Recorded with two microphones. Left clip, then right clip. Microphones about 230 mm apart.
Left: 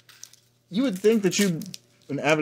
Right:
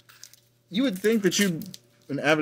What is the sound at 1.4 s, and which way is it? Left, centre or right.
Speech, left.